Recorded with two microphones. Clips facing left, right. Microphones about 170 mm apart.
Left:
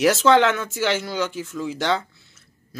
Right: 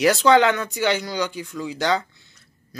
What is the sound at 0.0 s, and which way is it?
Speech, centre (ahead or behind).